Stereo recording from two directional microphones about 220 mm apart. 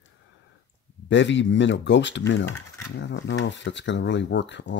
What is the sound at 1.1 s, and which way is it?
Speech, 55° left (ahead or behind).